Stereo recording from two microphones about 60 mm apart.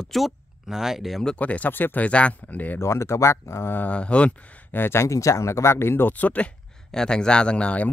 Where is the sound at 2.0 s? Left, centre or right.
Left.